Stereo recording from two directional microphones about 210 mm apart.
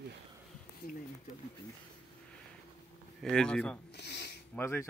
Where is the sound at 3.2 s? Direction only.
5° left (ahead or behind).